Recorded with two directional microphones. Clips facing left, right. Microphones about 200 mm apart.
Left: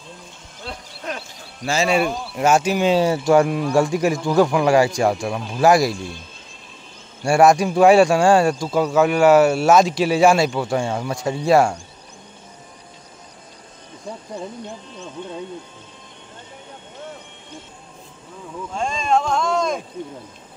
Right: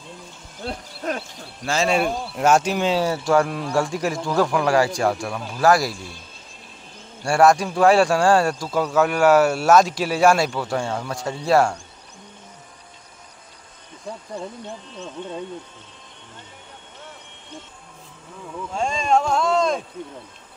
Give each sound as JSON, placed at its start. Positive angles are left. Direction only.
{"t": 0.7, "sound": "owl", "side_deg": -50}
{"t": 1.6, "sound": "speech", "side_deg": 5}
{"t": 2.9, "sound": "speech", "side_deg": 15}
{"t": 4.2, "sound": "speech", "side_deg": 5}
{"t": 7.2, "sound": "speech", "side_deg": 15}
{"t": 18.8, "sound": "speech", "side_deg": -10}